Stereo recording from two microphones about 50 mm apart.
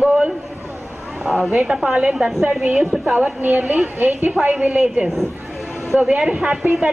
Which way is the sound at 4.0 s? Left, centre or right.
Right.